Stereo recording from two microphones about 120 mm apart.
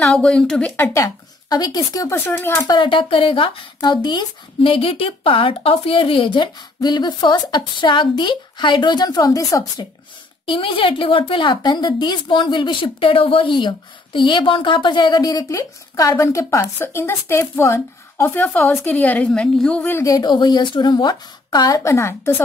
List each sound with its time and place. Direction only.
0.0 s speech: 5° left (ahead or behind)
0.9 s a woman's voice: 30° left (ahead or behind)
2.1 s speech: 20° left (ahead or behind)
2.7 s a woman's voice: 45° left (ahead or behind); by 9.8 s 30° left (ahead or behind)
10.4 s a woman's voice: 45° left (ahead or behind); by 20.0 s 10° left (ahead or behind)
20.0 s a woman's voice: 30° left (ahead or behind)